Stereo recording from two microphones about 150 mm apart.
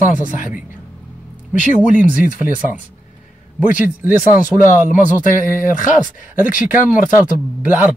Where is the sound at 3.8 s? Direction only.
15° right (ahead or behind).